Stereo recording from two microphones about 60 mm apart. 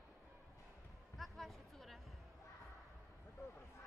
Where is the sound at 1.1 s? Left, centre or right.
Centre.